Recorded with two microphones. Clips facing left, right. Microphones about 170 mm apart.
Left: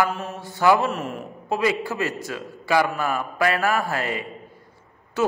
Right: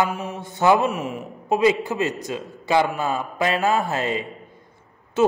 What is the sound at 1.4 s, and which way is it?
A man's voice, 20° right (ahead or behind).